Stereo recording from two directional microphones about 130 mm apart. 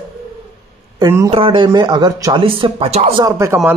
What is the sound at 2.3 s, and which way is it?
Speech, 40° right (ahead or behind).